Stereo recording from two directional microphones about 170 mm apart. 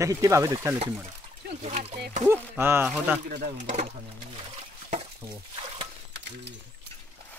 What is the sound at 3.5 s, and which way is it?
Speech, 45° right (ahead or behind).